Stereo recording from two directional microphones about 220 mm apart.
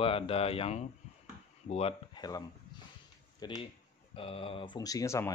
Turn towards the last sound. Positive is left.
turn(degrees=15)  # may be behind; listen again after turning